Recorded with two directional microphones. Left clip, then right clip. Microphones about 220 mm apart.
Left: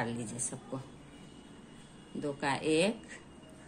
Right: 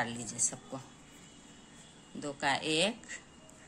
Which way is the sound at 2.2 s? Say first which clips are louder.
Right 1 dB; 20° right (ahead or behind).